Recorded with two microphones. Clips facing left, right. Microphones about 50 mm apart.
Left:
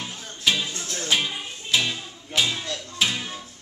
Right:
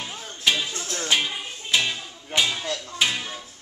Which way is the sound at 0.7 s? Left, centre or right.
Right.